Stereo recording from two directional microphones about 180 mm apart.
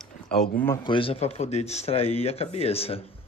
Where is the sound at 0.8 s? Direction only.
30° left (ahead or behind).